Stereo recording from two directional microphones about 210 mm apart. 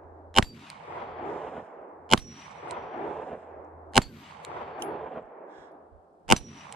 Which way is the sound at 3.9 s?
Centre (ahead or behind).